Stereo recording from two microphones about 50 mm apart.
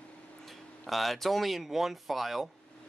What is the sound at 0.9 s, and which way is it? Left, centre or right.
Speech, centre.